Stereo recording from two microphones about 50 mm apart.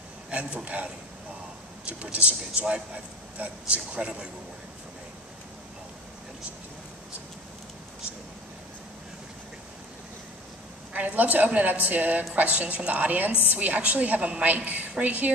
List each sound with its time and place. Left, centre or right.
0.3 s a sound: right
0.7 s a woman's voice: right
2.1 s a woman's voice: right
10.9 s a woman's voice: right